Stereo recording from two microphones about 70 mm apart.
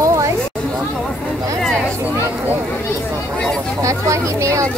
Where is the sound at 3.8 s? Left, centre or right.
Right.